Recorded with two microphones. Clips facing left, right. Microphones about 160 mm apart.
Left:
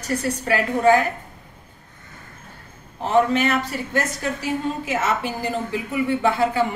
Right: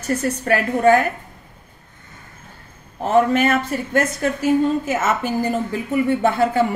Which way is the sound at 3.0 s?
50° right (ahead or behind).